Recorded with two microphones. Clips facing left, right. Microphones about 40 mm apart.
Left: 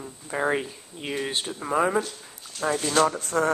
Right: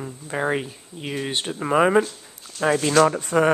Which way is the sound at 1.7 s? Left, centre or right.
Right.